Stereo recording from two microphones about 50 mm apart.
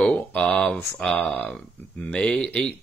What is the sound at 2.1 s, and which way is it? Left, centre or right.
Speech, centre.